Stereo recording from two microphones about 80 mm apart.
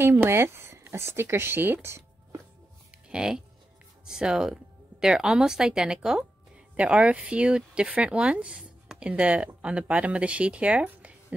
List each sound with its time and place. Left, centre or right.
0.0 s speech: right
3.1 s speech: centre